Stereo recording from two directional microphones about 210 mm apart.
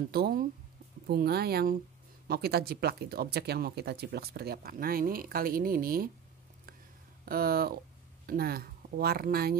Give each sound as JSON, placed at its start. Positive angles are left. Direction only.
{"t": 0.1, "sound": "speech", "side_deg": -45}
{"t": 7.2, "sound": "speech", "side_deg": -45}